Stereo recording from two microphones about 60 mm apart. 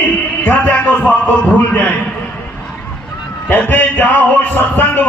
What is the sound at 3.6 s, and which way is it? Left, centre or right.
Speech, left.